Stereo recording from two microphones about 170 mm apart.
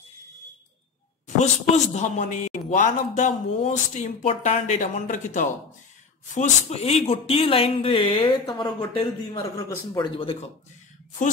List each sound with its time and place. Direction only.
2.0 s speech: 45° left (ahead or behind); by 9.4 s 30° left (ahead or behind)
9.4 s a man's voice: 15° left (ahead or behind)
10.1 s speech: 30° left (ahead or behind)